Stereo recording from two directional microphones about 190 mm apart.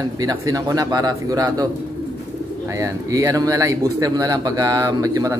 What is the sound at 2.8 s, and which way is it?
A man's voice, 15° right (ahead or behind).